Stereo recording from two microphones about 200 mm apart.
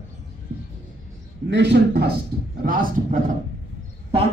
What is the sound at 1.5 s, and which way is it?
Speech, 60° right (ahead or behind).